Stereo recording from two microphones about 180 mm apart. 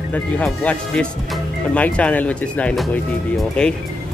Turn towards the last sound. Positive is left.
turn(degrees=5)  # may be behind; listen again after turning